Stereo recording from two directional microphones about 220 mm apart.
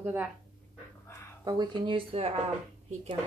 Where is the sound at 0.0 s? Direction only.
10° right (ahead or behind).